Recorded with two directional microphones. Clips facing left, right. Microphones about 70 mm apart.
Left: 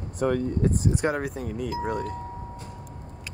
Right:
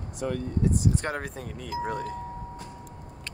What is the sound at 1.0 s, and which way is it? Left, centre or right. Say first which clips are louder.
Speech: left 6 dB; centre.